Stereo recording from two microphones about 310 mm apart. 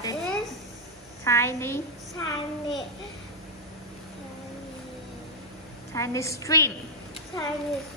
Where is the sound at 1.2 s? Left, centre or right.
Centre.